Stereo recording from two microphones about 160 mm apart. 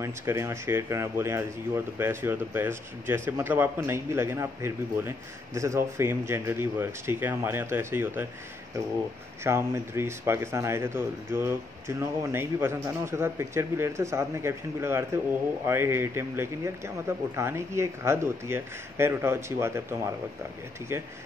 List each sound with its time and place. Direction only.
0.0 s a man's voice: 15° right (ahead or behind)
9.4 s a man's voice: 15° right (ahead or behind)